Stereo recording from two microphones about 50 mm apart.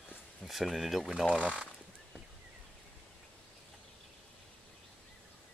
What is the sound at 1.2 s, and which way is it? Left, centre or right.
Speech, right.